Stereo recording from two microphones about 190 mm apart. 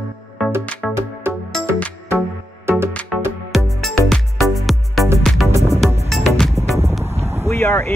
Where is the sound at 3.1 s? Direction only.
Centre (ahead or behind).